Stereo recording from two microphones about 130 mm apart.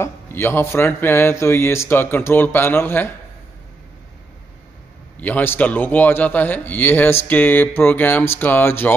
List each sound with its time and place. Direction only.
0.0 s speech: 20° left (ahead or behind)
5.2 s speech: 15° left (ahead or behind)